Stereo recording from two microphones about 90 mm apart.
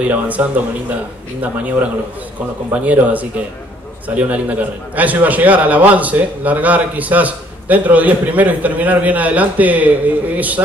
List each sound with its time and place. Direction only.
0.0 s a man's voice: 15° right (ahead or behind)
2.7 s a man's voice: 15° right (ahead or behind)